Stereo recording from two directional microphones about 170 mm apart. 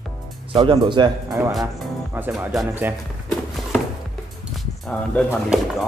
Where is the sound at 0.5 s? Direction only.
30° right (ahead or behind).